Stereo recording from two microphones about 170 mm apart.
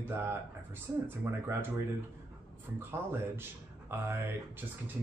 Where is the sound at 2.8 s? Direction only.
15° right (ahead or behind).